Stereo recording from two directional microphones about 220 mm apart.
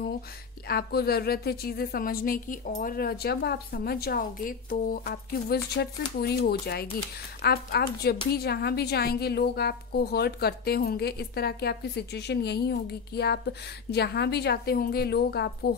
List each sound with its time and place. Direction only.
0.7 s a woman's voice: 45° left (ahead or behind)